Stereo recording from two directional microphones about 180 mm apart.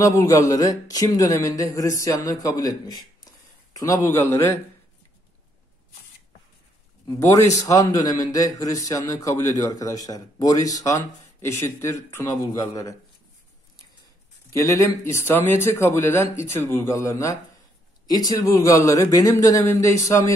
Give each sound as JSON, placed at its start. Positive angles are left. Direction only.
{"t": 0.0, "sound": "a man's voice", "side_deg": 20}
{"t": 7.1, "sound": "a man's voice", "side_deg": 15}
{"t": 14.5, "sound": "a man's voice", "side_deg": 20}